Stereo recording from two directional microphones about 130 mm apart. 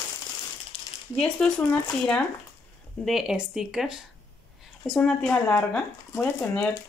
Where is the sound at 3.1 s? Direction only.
5° right (ahead or behind).